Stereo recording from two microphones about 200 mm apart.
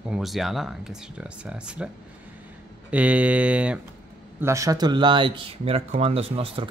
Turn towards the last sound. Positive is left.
turn(degrees=-25)  # may be behind; listen again after turning